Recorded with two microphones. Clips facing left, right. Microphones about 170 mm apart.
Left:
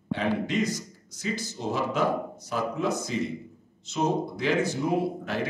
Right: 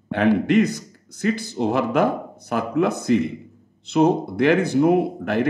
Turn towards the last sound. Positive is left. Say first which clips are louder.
# right 8 dB
turn(degrees=-55)  # may be behind; listen again after turning